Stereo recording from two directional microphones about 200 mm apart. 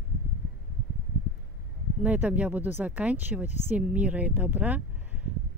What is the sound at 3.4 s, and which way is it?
Speech, 35° left (ahead or behind).